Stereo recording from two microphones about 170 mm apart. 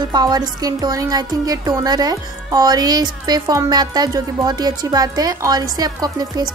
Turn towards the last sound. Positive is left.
turn(degrees=-25)  # may be behind; listen again after turning